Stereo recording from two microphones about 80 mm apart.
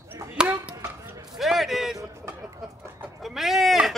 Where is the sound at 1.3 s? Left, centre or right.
Centre.